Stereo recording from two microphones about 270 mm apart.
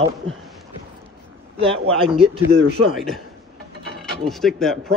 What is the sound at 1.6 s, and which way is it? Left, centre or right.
Speech, centre.